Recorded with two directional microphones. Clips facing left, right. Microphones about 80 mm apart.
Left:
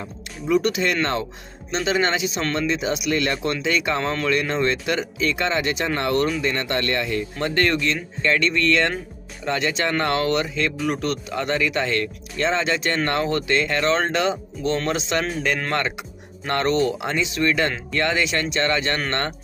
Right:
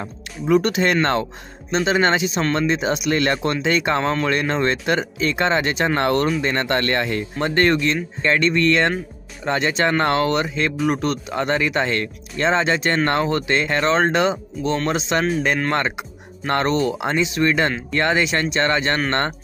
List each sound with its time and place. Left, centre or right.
0.0 s speech: right
1.7 s speech: right
7.3 s speech: right